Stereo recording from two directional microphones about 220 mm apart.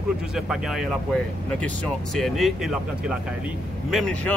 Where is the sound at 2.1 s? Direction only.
Centre (ahead or behind).